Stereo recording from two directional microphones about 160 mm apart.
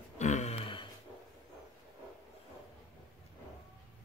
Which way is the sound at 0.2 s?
45° left (ahead or behind).